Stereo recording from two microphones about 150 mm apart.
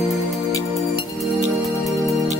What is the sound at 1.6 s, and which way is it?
Music, centre (ahead or behind).